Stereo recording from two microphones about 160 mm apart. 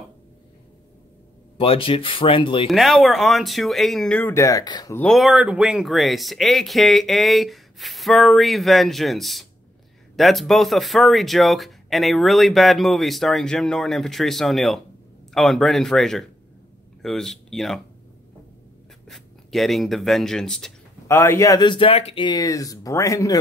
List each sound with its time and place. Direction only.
1.6 s speech: 35° left (ahead or behind)
2.7 s speech: centre (ahead or behind); by 4.9 s 25° left (ahead or behind)
4.9 s speech: 5° left (ahead or behind)
19.0 s speech: centre (ahead or behind)
21.1 s speech: 15° left (ahead or behind)